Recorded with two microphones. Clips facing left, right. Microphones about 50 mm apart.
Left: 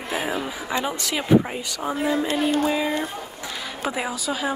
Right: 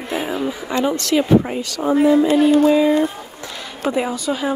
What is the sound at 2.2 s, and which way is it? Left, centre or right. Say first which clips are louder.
Music: right 9 dB; right.